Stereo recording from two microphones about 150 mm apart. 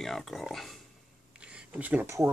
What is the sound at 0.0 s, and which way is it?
Speech, centre (ahead or behind).